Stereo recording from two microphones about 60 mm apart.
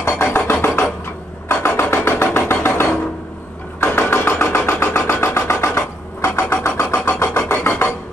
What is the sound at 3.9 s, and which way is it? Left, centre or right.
Vehicle, left.